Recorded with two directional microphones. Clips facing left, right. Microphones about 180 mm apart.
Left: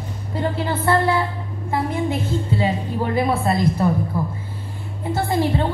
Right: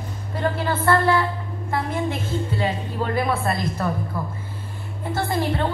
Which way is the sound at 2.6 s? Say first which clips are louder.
Left 3 dB; 15° left (ahead or behind).